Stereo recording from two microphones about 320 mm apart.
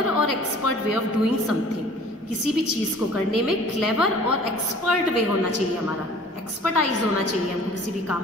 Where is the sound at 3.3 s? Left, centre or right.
Left.